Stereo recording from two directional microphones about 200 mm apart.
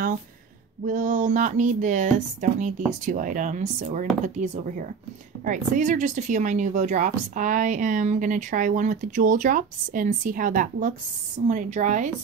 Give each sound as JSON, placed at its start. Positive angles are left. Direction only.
{"t": 0.8, "sound": "speech", "side_deg": -40}